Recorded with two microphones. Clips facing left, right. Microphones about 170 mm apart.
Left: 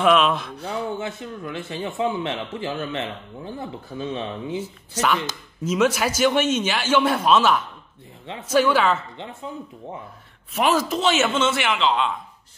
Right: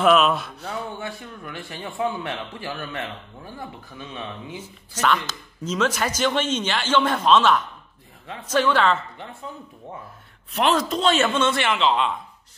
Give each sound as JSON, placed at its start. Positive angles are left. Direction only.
{"t": 0.0, "sound": "a man's voice", "side_deg": 0}
{"t": 0.7, "sound": "speech", "side_deg": 20}
{"t": 5.7, "sound": "a man's voice", "side_deg": 10}
{"t": 10.5, "sound": "a man's voice", "side_deg": 5}